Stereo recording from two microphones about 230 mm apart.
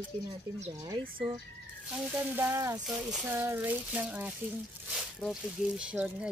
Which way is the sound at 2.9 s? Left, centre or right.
Centre.